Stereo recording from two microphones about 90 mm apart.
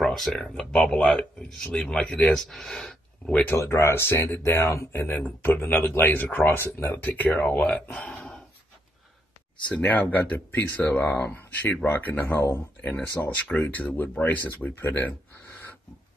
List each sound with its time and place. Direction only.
0.0 s speech: 5° left (ahead or behind)
3.5 s speech: 30° left (ahead or behind); by 8.4 s 15° left (ahead or behind)
9.7 s speech: 15° left (ahead or behind)